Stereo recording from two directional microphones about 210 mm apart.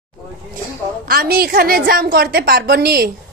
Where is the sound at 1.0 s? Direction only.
45° right (ahead or behind).